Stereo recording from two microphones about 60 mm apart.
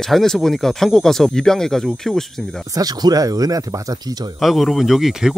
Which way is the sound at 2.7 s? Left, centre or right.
Right.